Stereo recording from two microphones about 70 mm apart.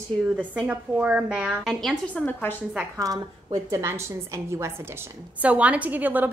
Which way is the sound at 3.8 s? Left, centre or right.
Right.